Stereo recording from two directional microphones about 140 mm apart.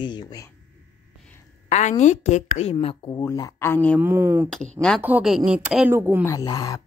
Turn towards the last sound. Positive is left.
turn(degrees=25)  # may be behind; listen again after turning